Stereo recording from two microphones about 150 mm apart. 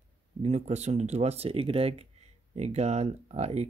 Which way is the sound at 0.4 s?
45° right (ahead or behind).